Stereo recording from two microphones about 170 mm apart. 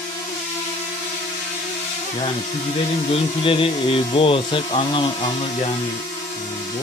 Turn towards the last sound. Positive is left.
turn(degrees=30)  # may be behind; listen again after turning